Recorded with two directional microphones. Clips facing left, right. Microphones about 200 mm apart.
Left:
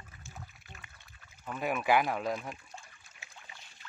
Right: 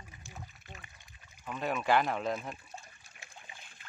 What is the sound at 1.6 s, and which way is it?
Speech, 10° left (ahead or behind).